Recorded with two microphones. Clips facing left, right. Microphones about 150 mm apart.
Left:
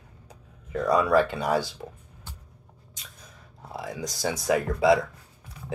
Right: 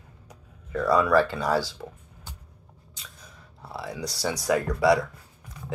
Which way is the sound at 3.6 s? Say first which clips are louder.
Even; 20° left (ahead or behind).